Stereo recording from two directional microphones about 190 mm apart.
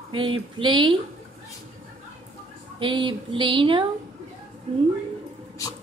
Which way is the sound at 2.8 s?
25° right (ahead or behind).